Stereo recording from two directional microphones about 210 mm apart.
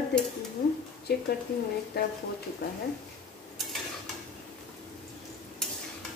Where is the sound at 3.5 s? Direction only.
Centre (ahead or behind).